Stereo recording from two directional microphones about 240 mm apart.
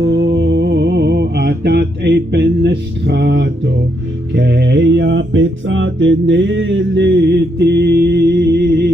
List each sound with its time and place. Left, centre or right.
0.0 s music: centre
0.4 s mantra: right
4.4 s music: right